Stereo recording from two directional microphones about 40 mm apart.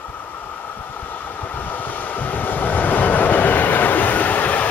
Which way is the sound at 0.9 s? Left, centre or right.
Left.